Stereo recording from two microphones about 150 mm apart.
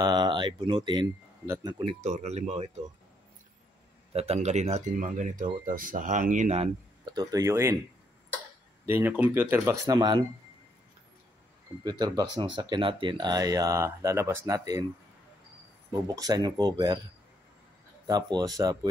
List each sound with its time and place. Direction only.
0.0 s speech: 30° right (ahead or behind)
2.0 s speech: 50° right (ahead or behind)
4.1 s speech: 45° right (ahead or behind)
7.1 s speech: 25° right (ahead or behind)
8.8 s speech: 15° right (ahead or behind)
9.9 s speech: 30° right (ahead or behind)
11.8 s speech: 25° right (ahead or behind)
15.9 s speech: 25° right (ahead or behind)
18.0 s speech: 25° right (ahead or behind)